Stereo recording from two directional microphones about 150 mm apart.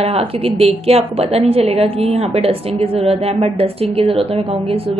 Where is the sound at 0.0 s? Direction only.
40° right (ahead or behind).